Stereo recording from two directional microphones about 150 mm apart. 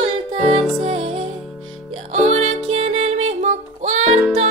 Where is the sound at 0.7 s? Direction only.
40° right (ahead or behind).